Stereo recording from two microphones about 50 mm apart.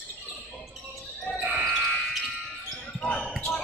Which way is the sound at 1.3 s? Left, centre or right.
Right.